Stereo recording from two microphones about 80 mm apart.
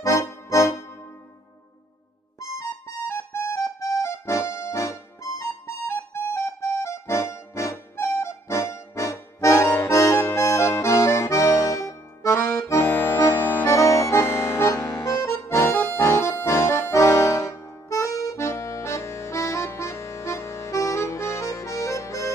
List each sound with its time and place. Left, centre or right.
0.0 s music: left
3.1 s music: left
13.7 s accordion: left
15.4 s accordion: left